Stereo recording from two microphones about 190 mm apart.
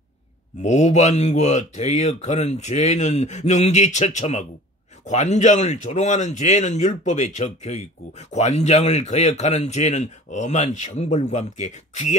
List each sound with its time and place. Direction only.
0.6 s speech: 35° left (ahead or behind)